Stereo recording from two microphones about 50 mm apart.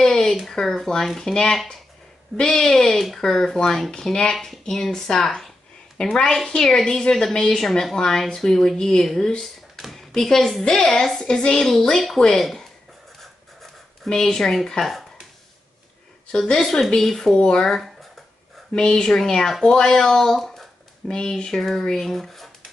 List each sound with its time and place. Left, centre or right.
0.0 s a sound: centre
0.5 s a woman's voice: centre
14.0 s a woman's voice: centre
16.3 s a woman's voice: centre
17.4 s a woman's voice: centre
17.6 s speech: centre
18.8 s a woman's voice: centre
21.1 s a woman's voice: centre